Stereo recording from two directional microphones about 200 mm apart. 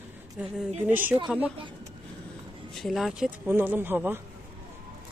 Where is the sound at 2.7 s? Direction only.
Centre (ahead or behind).